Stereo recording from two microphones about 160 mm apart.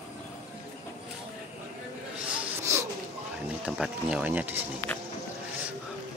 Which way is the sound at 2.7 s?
15° right (ahead or behind).